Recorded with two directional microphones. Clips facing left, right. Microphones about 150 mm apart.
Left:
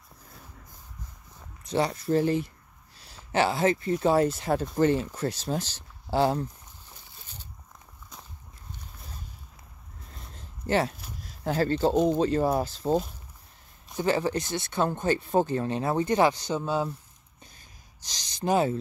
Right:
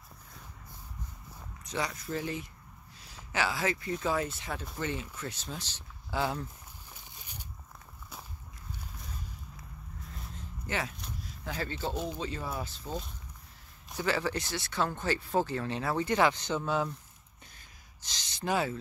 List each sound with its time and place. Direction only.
1.6 s speech: 30° left (ahead or behind)
10.7 s speech: 35° left (ahead or behind)
14.0 s speech: 20° left (ahead or behind)
16.3 s speech: 35° left (ahead or behind)
18.0 s speech: 40° left (ahead or behind)
18.5 s speech: 25° left (ahead or behind)